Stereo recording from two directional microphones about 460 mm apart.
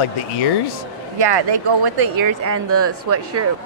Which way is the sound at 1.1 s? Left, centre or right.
Right.